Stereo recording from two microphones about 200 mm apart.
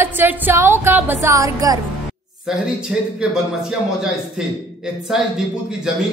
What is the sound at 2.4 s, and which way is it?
Speech, 5° right (ahead or behind).